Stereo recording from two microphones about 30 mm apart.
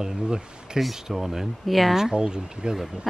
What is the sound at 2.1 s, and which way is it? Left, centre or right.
Speech, right.